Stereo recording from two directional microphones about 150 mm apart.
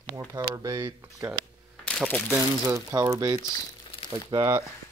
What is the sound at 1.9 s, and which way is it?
Speech, 10° left (ahead or behind).